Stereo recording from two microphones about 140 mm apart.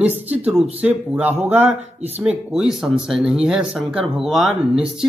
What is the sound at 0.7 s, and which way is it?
Speech, 10° right (ahead or behind).